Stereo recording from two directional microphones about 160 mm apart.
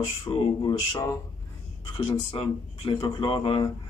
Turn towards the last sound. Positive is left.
turn(degrees=30)  # may be behind; listen again after turning